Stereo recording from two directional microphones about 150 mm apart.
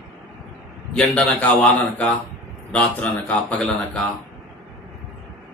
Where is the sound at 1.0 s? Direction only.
5° left (ahead or behind).